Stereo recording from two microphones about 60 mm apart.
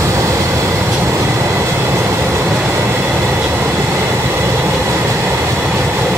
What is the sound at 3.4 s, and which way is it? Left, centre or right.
Train, right.